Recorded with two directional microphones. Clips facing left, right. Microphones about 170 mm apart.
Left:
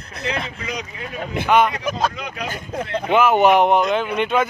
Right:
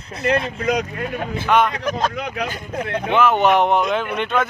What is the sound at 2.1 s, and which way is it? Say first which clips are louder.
Speech: right 4 dB; 65° right (ahead or behind).